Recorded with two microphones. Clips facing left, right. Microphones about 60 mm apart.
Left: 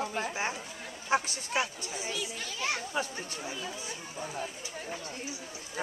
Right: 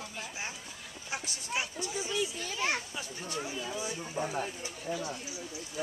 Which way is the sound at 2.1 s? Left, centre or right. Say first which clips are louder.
Right 3 dB; right.